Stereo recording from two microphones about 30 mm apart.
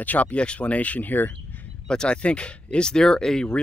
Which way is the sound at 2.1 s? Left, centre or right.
Left.